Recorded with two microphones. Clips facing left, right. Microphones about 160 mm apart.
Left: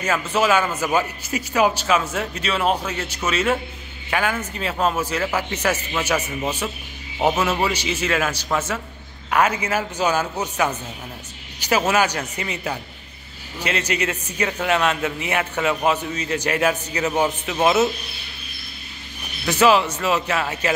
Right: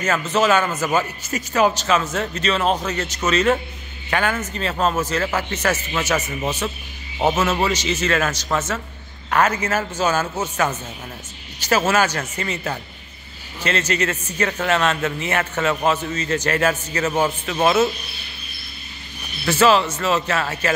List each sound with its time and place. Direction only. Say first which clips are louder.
0.0 s a man's voice: right 1 dB; 10° left (ahead or behind)
19.4 s a man's voice: even; 15° left (ahead or behind)